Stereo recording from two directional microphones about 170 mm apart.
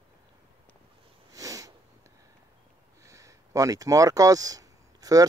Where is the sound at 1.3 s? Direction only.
20° right (ahead or behind).